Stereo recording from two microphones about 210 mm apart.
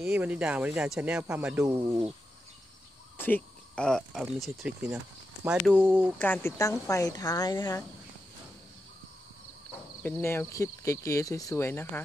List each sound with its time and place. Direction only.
0.0 s speech: 5° right (ahead or behind)
3.2 s speech: 10° left (ahead or behind); by 6.1 s 10° right (ahead or behind)
6.1 s speech: 10° left (ahead or behind)
10.0 s speech: 10° left (ahead or behind)